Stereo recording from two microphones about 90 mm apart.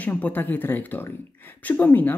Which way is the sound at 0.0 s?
20° left (ahead or behind).